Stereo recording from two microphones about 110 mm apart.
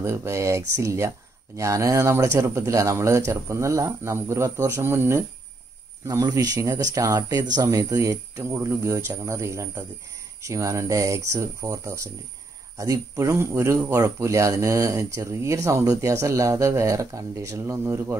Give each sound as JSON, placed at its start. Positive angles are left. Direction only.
{"t": 0.0, "sound": "speech", "side_deg": -25}
{"t": 6.0, "sound": "speech", "side_deg": -35}